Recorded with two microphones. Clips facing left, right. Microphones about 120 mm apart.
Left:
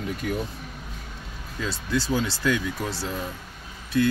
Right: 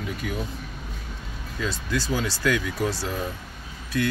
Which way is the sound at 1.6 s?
25° left (ahead or behind).